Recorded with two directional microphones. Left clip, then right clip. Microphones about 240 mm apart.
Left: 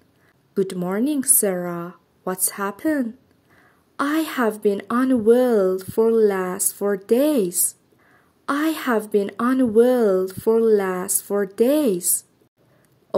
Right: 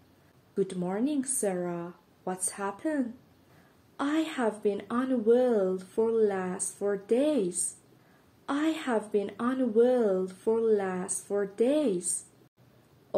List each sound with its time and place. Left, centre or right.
0.6 s speech: left